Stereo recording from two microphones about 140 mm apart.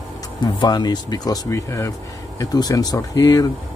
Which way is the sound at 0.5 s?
30° left (ahead or behind).